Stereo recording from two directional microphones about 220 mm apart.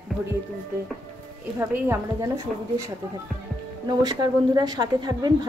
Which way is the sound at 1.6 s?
10° right (ahead or behind).